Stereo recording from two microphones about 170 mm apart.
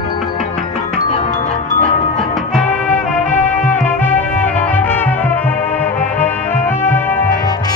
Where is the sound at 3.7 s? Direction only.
10° left (ahead or behind).